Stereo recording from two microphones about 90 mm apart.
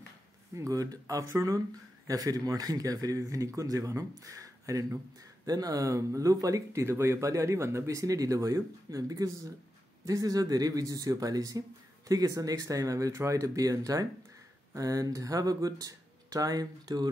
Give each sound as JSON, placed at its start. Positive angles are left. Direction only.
{"t": 0.6, "sound": "speech", "side_deg": -40}